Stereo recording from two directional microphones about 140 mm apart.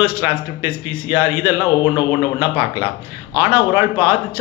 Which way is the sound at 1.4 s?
35° left (ahead or behind).